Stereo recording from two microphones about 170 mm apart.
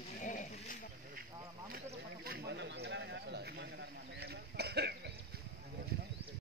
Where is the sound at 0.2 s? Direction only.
50° left (ahead or behind).